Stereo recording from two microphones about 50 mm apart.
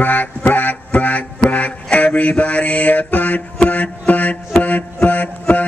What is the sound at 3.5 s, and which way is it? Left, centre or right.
Mantra, left.